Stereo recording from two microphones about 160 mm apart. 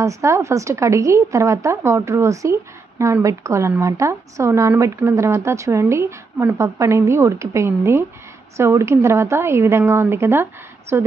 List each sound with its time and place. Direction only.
0.0 s a woman's voice: 20° right (ahead or behind)